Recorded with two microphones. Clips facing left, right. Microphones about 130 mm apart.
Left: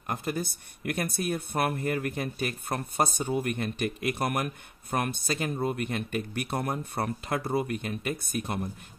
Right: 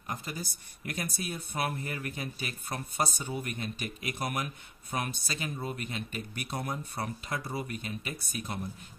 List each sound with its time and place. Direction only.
0.0 s speech: 60° left (ahead or behind)